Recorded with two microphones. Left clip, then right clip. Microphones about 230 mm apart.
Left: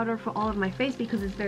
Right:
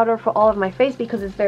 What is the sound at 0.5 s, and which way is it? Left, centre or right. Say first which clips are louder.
Speech: right 10 dB; centre.